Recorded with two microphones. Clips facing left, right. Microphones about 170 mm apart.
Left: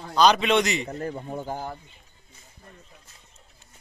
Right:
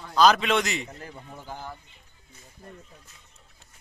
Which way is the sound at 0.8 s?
45° left (ahead or behind).